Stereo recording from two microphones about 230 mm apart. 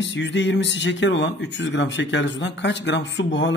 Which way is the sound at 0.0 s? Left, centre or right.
Left.